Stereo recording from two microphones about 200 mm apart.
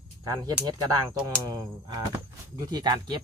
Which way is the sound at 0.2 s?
20° right (ahead or behind).